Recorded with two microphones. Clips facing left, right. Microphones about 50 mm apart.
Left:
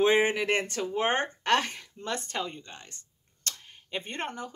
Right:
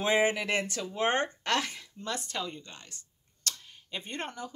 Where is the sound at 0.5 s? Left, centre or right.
Left.